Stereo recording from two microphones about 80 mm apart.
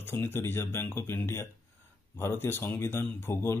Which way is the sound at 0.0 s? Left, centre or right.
Left.